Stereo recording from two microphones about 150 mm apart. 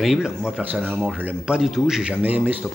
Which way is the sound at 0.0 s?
5° right (ahead or behind).